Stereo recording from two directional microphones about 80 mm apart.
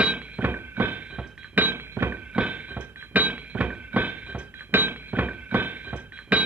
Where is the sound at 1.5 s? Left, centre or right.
Right.